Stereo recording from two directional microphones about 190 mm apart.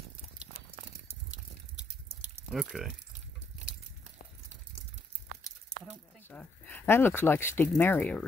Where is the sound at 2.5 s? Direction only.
Centre (ahead or behind).